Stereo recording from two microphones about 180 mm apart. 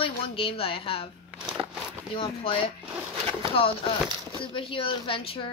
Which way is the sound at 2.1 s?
30° left (ahead or behind).